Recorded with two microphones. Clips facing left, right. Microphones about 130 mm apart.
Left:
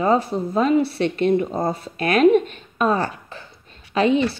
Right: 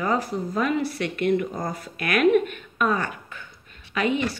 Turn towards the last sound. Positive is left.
turn(degrees=30)  # may be behind; listen again after turning